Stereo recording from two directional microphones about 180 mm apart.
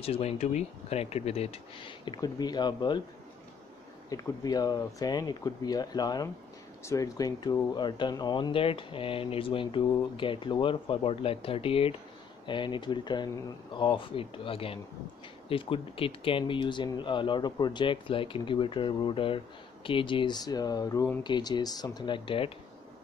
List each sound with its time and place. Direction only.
0.0 s speech: 35° left (ahead or behind)
4.1 s speech: 20° left (ahead or behind)